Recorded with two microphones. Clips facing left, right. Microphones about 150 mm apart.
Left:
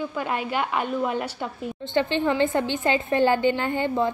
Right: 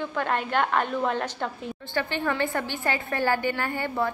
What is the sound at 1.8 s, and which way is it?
A woman's voice, 20° left (ahead or behind).